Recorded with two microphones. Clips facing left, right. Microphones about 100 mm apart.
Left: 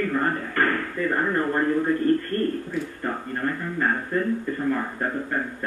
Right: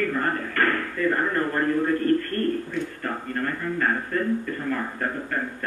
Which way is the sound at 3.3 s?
15° left (ahead or behind).